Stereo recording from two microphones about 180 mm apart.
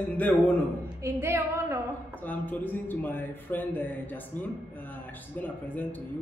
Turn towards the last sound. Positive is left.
turn(degrees=10)  # may be behind; listen again after turning